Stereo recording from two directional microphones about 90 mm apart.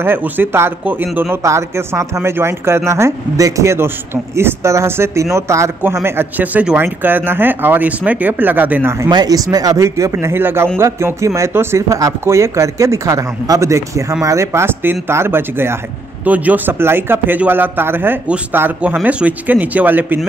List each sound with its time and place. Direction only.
0.0 s speech: 25° right (ahead or behind)
6.0 s speech: 20° right (ahead or behind)
9.1 s speech: 45° right (ahead or behind)
10.1 s speech: 25° right (ahead or behind)